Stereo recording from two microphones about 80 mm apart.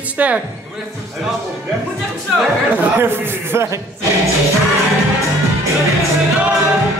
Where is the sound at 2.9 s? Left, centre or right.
Right.